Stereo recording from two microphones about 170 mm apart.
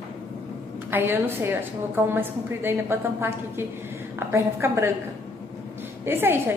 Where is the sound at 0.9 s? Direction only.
10° right (ahead or behind).